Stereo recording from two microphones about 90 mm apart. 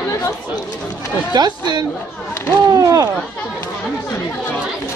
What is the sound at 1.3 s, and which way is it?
Speech, 50° right (ahead or behind).